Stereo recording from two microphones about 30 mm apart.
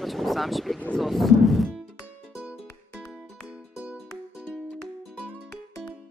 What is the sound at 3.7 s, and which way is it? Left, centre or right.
Music, right.